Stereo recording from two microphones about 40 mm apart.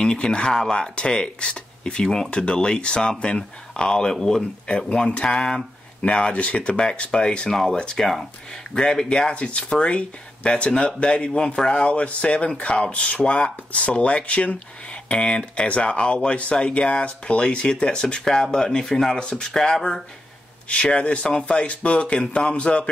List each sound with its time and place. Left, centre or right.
0.0 s speech: left
8.0 s speech: centre
8.7 s speech: centre
9.3 s speech: left; by 19.1 s centre
19.1 s speech: left
20.7 s speech: left